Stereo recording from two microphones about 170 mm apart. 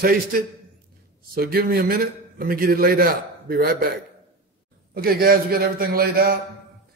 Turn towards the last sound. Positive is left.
turn(degrees=-60)  # may be behind; listen again after turning